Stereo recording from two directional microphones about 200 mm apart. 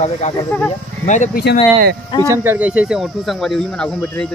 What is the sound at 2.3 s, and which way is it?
Speech, 10° right (ahead or behind).